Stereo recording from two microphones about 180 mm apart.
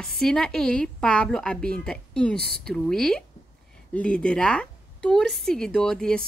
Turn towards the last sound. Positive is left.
turn(degrees=5)  # may be behind; listen again after turning